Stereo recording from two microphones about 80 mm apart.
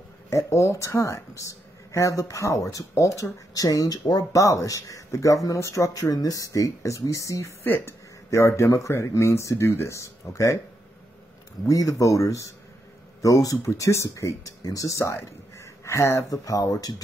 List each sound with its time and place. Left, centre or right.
0.3 s speech: left
7.6 s speech: left
11.6 s speech: left